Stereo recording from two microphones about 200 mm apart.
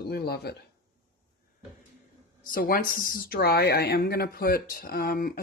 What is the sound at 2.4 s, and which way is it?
Speech, 45° left (ahead or behind).